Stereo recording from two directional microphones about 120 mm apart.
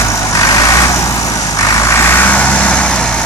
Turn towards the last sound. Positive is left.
turn(degrees=10)  # may be behind; listen again after turning